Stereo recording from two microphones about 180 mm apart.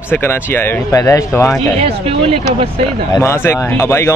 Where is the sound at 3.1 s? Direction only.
15° left (ahead or behind).